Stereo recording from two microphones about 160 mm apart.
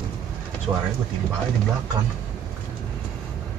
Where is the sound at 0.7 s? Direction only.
20° right (ahead or behind).